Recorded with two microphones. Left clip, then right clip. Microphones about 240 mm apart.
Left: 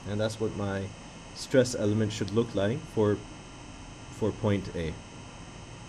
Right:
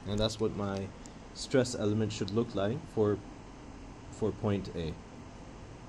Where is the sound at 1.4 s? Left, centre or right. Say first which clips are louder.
Left 5 dB; centre.